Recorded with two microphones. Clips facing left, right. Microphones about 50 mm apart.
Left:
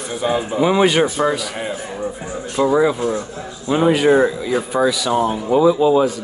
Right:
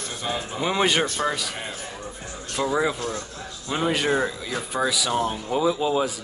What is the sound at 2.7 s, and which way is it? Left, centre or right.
Speech, centre.